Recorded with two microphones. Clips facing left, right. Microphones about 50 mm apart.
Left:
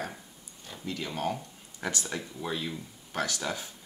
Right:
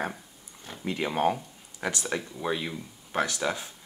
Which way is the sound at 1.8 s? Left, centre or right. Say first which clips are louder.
Right 3 dB; right.